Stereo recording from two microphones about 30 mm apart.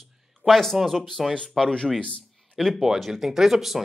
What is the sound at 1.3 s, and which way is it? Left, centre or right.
Speech, left.